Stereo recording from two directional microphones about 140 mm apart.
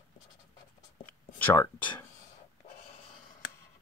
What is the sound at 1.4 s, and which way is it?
Speech, 15° left (ahead or behind).